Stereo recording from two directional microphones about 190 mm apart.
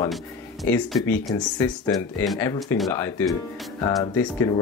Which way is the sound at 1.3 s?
15° left (ahead or behind).